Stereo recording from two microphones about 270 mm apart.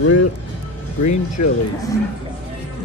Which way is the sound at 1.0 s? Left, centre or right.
Left.